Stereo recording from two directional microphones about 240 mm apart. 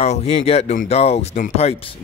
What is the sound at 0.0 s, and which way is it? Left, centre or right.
Speech, left.